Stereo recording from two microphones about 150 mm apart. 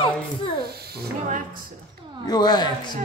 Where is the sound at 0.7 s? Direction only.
90° right.